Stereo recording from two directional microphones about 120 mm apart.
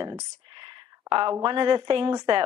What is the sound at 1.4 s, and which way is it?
Speech, 40° right (ahead or behind).